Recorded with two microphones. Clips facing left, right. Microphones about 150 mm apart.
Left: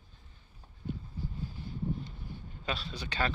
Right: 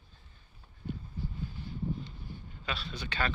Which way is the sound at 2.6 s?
40° left (ahead or behind).